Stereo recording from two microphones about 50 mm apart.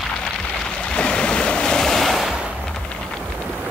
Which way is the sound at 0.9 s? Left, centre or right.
Left.